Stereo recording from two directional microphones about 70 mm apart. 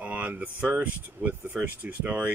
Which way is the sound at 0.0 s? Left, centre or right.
Right.